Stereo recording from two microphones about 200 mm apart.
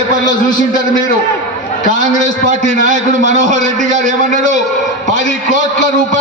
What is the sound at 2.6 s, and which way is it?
Speech, 65° left (ahead or behind).